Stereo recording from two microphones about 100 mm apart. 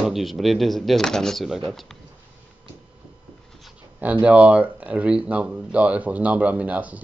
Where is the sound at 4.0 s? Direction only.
15° right (ahead or behind).